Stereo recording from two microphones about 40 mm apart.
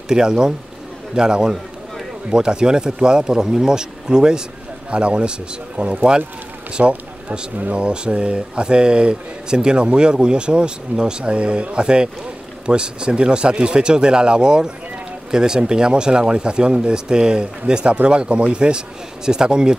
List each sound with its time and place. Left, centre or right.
0.1 s speech: centre